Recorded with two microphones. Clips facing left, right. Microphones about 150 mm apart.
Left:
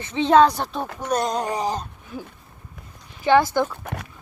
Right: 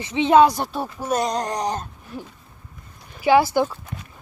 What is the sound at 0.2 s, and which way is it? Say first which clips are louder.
Speech: right 1 dB; 10° right (ahead or behind).